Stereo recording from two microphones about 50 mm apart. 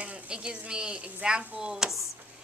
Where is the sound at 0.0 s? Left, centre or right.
Right.